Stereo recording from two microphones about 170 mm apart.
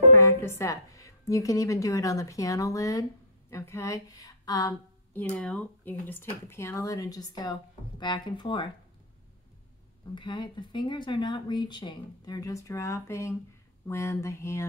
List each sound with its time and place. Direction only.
0.1 s a woman's voice: 15° left (ahead or behind)
5.3 s speech: 5° left (ahead or behind); by 8.6 s 25° left (ahead or behind)
10.1 s speech: 30° left (ahead or behind)